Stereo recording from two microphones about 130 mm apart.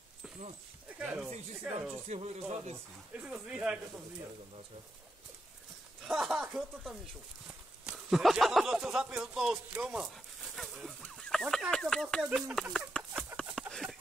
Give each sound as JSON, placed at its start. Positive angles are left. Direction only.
{"t": 0.8, "sound": "speech", "side_deg": -10}
{"t": 1.6, "sound": "speech", "side_deg": -20}
{"t": 2.0, "sound": "speech", "side_deg": -55}
{"t": 3.2, "sound": "speech", "side_deg": -10}
{"t": 6.0, "sound": "speech", "side_deg": -5}
{"t": 7.4, "sound": "speech", "side_deg": -5}
{"t": 11.4, "sound": "speech", "side_deg": -5}
{"t": 11.7, "sound": "speech", "side_deg": 5}
{"t": 12.3, "sound": "speech", "side_deg": -10}
{"t": 12.5, "sound": "a sound", "side_deg": 5}